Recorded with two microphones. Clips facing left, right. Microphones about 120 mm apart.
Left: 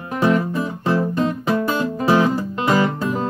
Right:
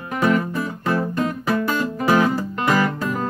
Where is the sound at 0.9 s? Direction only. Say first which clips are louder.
Left 2 dB; 30° left (ahead or behind).